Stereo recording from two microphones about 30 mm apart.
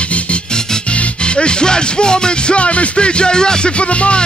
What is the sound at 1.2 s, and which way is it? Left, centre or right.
Music, left.